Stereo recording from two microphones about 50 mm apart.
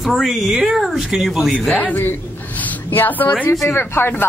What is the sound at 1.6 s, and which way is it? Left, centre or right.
Speech, left.